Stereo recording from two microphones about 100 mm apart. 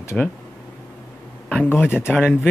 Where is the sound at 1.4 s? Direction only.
10° left (ahead or behind).